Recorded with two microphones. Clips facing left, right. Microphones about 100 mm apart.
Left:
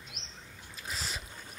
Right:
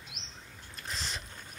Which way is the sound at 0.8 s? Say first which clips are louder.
Even; 5° left (ahead or behind).